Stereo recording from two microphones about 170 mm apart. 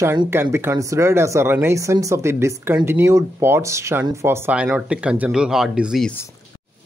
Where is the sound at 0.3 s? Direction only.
15° right (ahead or behind).